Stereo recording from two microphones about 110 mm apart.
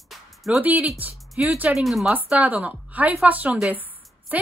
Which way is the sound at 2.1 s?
15° right (ahead or behind).